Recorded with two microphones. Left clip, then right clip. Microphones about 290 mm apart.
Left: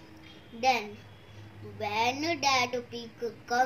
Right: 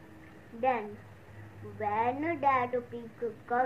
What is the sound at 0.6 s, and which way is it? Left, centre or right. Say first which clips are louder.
A child's voice: left 3 dB; left.